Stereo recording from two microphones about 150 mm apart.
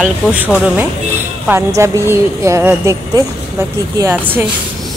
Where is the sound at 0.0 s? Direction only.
10° right (ahead or behind).